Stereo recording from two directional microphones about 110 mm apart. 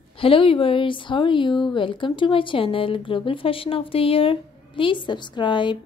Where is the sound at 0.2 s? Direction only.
55° left (ahead or behind).